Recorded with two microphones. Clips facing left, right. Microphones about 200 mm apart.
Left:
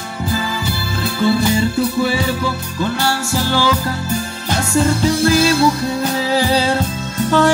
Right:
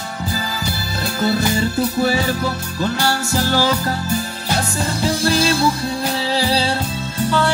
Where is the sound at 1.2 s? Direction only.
40° right (ahead or behind).